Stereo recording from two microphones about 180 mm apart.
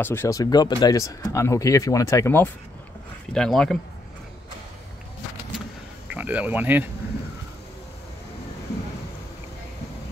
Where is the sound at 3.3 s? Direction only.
5° left (ahead or behind).